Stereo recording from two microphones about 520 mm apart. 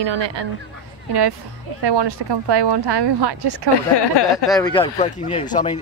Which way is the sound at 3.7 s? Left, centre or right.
Left.